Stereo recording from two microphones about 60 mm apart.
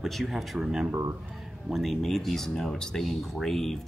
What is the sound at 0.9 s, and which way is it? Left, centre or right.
Speech, right.